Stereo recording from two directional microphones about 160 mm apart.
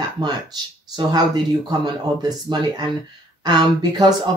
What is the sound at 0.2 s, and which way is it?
Speech, 25° right (ahead or behind).